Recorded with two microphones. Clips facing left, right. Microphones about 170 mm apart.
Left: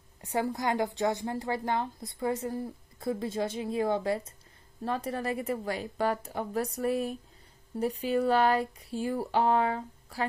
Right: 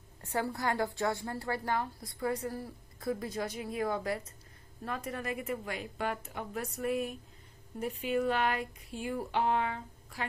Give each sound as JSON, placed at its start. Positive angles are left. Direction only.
{"t": 0.2, "sound": "a woman's voice", "side_deg": 15}